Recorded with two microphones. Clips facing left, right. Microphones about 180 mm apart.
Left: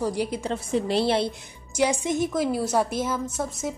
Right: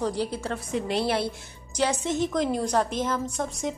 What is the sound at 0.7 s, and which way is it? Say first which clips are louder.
Speech: left 3 dB; 30° left (ahead or behind).